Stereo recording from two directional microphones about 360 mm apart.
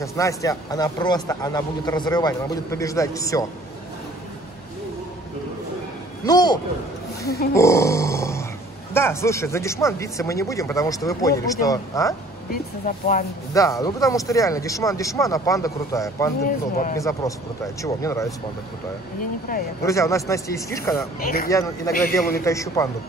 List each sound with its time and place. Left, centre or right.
0.0 s speech: centre
6.2 s speech: centre
7.5 s grunt: centre
8.9 s speech: centre
12.4 s speech: left
13.5 s speech: centre
16.4 s speech: left
16.9 s speech: centre
19.5 s speech: left
19.9 s speech: centre
21.2 s speech: left
21.5 s speech: centre